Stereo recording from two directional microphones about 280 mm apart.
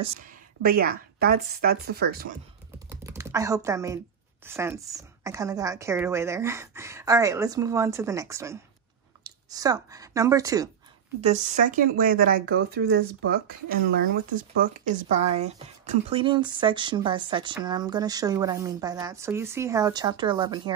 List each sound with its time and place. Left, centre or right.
0.0 s a woman's voice: right
2.9 s typing: centre
4.5 s speech: centre
11.1 s a woman's voice: right
15.0 s speech: right